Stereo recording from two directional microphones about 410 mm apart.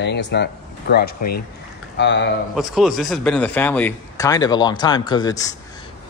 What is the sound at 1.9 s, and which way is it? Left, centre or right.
Speech, left.